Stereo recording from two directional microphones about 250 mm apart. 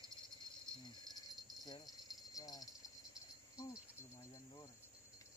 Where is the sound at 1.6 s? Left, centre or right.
Centre.